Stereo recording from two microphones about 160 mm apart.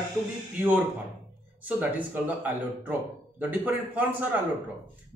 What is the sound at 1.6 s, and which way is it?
Speech, 10° right (ahead or behind).